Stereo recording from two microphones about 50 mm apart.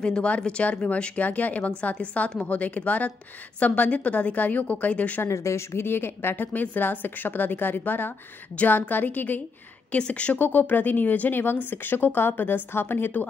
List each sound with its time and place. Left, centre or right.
0.0 s a woman's voice: centre
5.2 s a woman's voice: left
9.8 s a woman's voice: left
10.4 s a woman's voice: left